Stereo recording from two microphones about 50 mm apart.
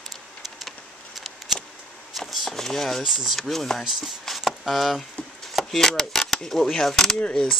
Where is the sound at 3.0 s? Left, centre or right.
Centre.